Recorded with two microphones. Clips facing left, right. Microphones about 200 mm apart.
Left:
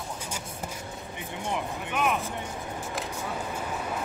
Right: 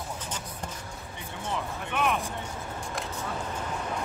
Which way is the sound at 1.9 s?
5° left (ahead or behind).